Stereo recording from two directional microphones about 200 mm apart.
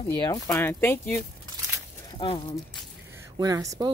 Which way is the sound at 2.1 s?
25° left (ahead or behind).